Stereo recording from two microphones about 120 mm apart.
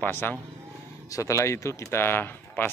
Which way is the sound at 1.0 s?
25° left (ahead or behind).